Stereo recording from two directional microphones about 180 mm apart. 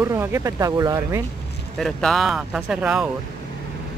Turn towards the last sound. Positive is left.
turn(degrees=-5)  # may be behind; listen again after turning